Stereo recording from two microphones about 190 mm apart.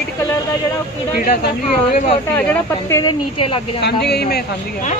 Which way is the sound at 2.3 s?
15° left (ahead or behind).